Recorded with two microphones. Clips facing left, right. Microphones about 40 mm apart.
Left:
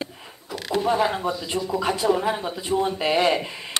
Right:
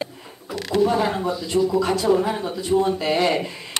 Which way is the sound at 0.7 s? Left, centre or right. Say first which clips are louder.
Right 2 dB; centre.